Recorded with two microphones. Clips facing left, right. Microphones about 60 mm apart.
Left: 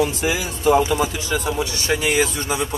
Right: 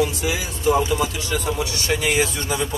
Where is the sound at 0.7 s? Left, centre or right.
Left.